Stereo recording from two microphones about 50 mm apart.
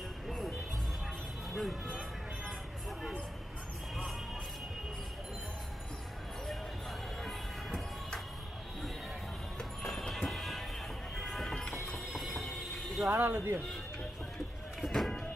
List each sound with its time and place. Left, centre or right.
1.5 s speech: centre
9.6 s music: centre
12.1 s mechanisms: centre
13.1 s speech: right
14.8 s a sound: centre